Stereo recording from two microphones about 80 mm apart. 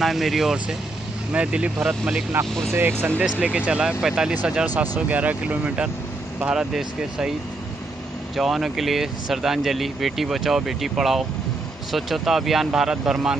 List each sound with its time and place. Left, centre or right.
0.0 s speech: centre
1.3 s speech: centre
2.7 s speech: right
3.2 s speech: centre
8.4 s speech: centre